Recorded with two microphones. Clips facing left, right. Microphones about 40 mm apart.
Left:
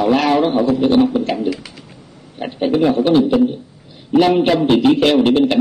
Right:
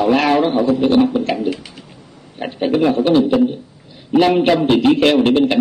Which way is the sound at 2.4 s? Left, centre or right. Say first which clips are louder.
Even; centre.